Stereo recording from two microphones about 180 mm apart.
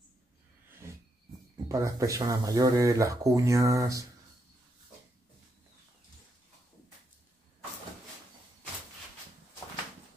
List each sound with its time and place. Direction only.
1.7 s speech: 20° right (ahead or behind)